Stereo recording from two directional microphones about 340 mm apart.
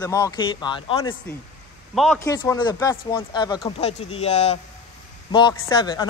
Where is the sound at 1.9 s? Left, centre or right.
Centre.